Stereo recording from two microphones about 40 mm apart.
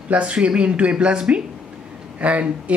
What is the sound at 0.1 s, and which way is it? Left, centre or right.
Speech, right.